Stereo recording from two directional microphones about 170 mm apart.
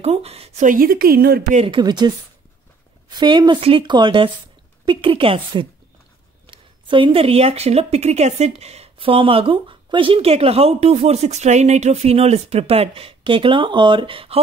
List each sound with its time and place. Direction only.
0.0 s a woman's voice: 35° right (ahead or behind); by 1.4 s 65° right (ahead or behind)
1.7 s a woman's voice: 25° right (ahead or behind)